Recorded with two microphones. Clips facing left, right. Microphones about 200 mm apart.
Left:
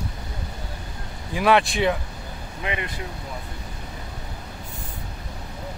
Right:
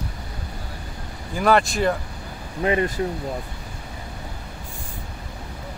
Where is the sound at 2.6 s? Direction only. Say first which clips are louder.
Right 9 dB; 40° right (ahead or behind).